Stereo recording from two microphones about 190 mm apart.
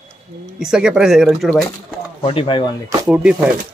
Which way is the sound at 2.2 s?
25° left (ahead or behind).